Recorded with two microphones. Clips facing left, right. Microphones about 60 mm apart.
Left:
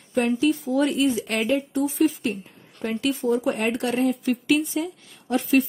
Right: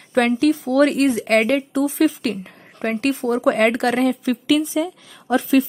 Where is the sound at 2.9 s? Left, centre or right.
Right.